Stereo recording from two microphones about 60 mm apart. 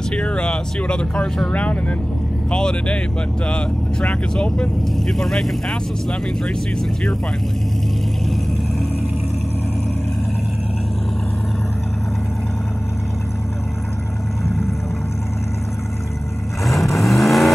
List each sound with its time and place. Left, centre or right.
0.1 s speech: centre
5.0 s speech: centre
16.6 s vehicle: centre